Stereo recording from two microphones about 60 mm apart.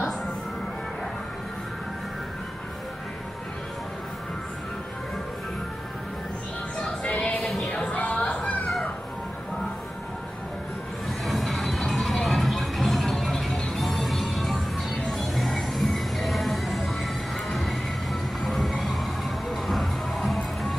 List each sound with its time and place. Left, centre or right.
7.1 s music: centre
7.4 s music: centre
7.7 s a sound: left
11.1 s music: centre